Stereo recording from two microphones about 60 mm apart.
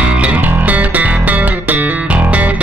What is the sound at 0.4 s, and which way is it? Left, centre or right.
Music, right.